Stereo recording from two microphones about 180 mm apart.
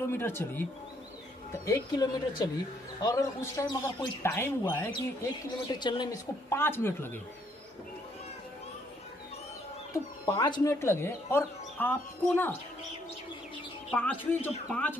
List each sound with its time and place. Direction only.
0.0 s speech: 15° left (ahead or behind)
1.7 s a woman's voice: 20° left (ahead or behind)
6.5 s speech: 15° left (ahead or behind)
10.2 s speech: 25° left (ahead or behind)
13.9 s speech: 10° left (ahead or behind)